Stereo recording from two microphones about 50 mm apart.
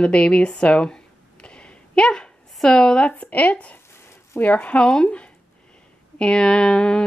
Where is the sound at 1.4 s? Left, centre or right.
Left.